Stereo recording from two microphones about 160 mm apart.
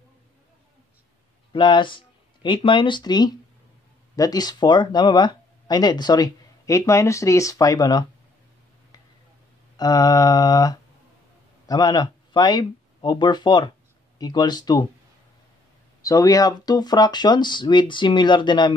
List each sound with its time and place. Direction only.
1.5 s speech: 30° left (ahead or behind)
9.8 s speech: 25° left (ahead or behind)
16.0 s speech: 20° left (ahead or behind)